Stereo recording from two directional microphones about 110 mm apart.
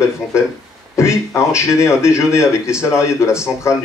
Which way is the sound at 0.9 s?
25° left (ahead or behind).